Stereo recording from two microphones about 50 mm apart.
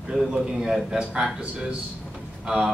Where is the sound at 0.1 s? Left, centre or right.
Centre.